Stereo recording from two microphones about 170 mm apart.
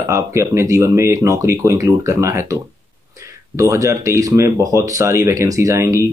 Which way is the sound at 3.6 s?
20° right (ahead or behind).